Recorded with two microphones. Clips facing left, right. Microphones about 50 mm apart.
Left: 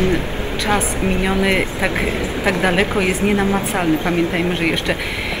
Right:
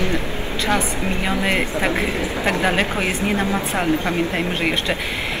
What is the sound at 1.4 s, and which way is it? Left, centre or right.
Speech, left.